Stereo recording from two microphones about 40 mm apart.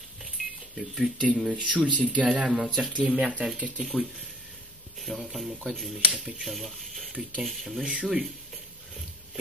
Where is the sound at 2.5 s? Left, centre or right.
Centre.